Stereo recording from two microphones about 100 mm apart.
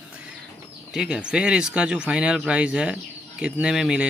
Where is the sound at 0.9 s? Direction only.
10° right (ahead or behind).